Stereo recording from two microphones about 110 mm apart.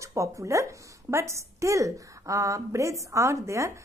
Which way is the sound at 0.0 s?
30° right (ahead or behind).